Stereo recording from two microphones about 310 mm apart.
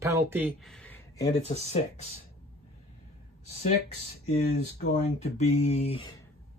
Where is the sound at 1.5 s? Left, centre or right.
Left.